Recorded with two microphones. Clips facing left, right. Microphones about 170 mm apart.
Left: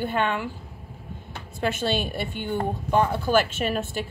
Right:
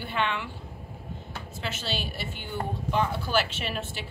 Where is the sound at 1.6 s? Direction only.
55° left (ahead or behind).